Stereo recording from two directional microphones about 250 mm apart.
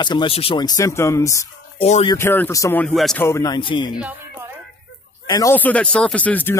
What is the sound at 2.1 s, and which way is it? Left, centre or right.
A man's voice, centre.